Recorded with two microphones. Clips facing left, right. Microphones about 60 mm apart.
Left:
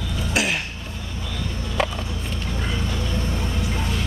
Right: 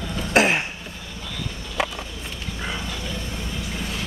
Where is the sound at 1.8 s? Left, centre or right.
Centre.